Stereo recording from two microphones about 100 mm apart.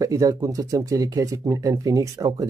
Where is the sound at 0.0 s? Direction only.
35° right (ahead or behind).